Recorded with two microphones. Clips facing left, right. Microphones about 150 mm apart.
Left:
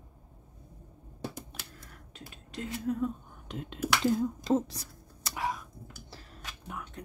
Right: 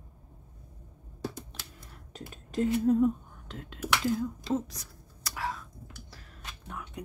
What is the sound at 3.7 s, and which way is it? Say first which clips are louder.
Speech: left 2 dB; 35° left (ahead or behind).